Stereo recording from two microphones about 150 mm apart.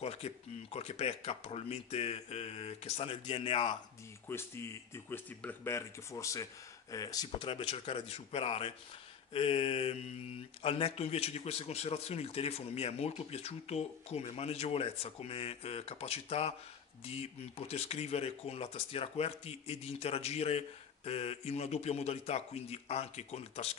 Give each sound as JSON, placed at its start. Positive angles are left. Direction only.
{"t": 0.0, "sound": "speech", "side_deg": 40}
{"t": 4.3, "sound": "speech", "side_deg": 15}